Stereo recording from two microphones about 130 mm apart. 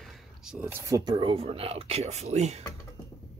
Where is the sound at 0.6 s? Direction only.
20° right (ahead or behind); by 2.6 s 60° right (ahead or behind).